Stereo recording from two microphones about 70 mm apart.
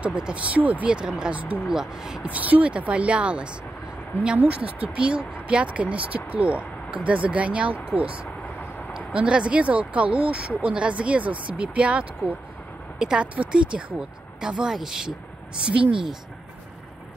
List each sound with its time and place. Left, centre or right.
0.0 s speech: centre
2.2 s speech: right
8.4 s vehicle: left
8.9 s speech: centre